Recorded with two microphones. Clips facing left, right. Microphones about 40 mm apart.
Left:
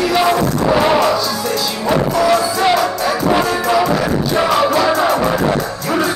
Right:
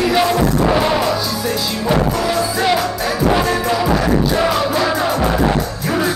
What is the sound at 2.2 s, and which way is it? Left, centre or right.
Music, centre.